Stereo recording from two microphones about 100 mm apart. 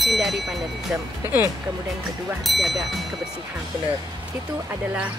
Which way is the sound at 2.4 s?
Centre (ahead or behind).